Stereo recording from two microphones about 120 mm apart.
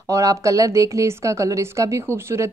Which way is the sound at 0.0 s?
25° right (ahead or behind).